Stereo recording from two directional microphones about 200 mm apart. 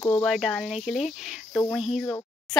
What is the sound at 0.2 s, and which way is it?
Speech, centre (ahead or behind).